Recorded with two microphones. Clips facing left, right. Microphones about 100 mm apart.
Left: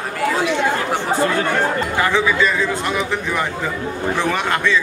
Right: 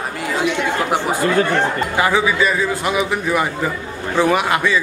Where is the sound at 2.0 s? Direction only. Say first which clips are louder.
Right 1 dB; 10° right (ahead or behind).